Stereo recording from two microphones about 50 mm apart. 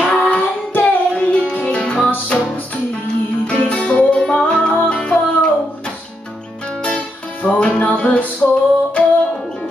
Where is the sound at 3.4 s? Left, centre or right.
Left.